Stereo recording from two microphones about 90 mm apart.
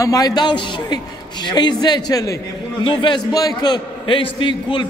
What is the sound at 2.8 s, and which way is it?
A man's voice, 60° left (ahead or behind).